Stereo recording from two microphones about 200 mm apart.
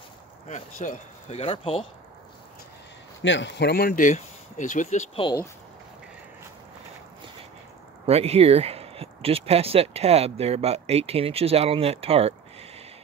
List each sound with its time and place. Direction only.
0.5 s speech: 40° left (ahead or behind)
3.2 s speech: 65° left (ahead or behind); by 5.4 s 25° left (ahead or behind)
8.1 s speech: 30° right (ahead or behind)